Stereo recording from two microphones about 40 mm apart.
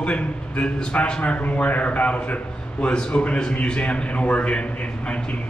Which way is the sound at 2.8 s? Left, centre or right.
Left.